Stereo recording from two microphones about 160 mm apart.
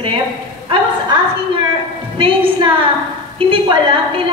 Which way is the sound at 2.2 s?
35° right (ahead or behind).